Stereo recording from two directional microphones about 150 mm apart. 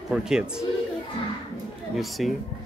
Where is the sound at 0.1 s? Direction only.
5° right (ahead or behind).